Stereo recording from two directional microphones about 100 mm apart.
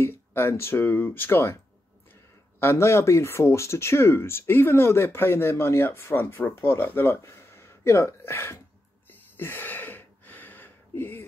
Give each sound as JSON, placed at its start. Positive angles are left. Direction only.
{"t": 0.0, "sound": "speech", "side_deg": 25}
{"t": 2.6, "sound": "speech", "side_deg": 25}